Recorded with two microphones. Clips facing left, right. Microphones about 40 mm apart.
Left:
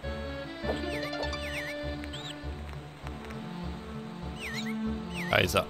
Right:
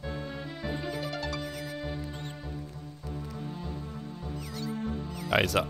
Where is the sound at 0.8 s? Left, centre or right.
Left.